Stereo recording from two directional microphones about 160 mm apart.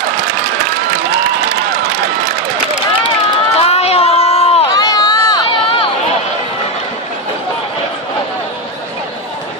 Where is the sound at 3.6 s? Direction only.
40° left (ahead or behind).